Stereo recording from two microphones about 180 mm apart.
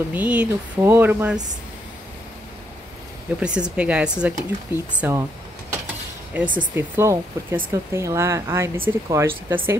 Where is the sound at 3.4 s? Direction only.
5° right (ahead or behind).